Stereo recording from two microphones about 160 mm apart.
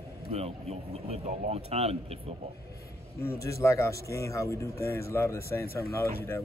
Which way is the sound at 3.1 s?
20° left (ahead or behind).